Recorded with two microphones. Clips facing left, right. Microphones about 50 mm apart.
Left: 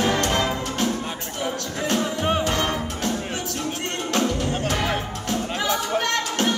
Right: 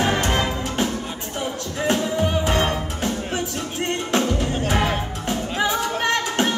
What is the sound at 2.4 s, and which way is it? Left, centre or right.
Music, right.